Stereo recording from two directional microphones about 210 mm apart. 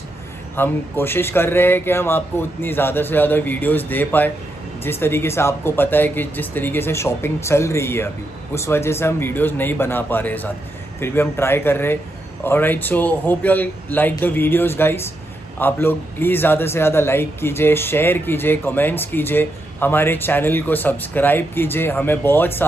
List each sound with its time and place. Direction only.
0.6 s a man's voice: 10° left (ahead or behind)